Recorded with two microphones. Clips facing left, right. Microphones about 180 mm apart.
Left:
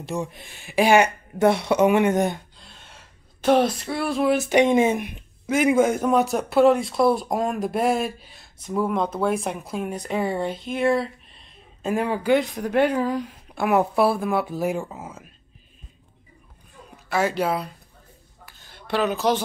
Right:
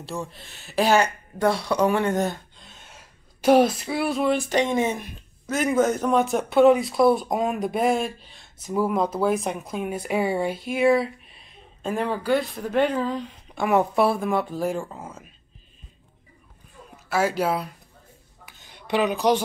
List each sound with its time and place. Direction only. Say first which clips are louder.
0.0 s speech: left 4 dB; 15° left (ahead or behind)
2.6 s gasp: even; 5° right (ahead or behind)
4.3 s speech: left 8 dB; 10° left (ahead or behind)
8.6 s speech: right 1 dB; 5° right (ahead or behind)
11.8 s speech: left 2 dB; 10° left (ahead or behind)
17.1 s speech: even; 5° right (ahead or behind)
18.6 s a sound: right 1 dB; 15° right (ahead or behind)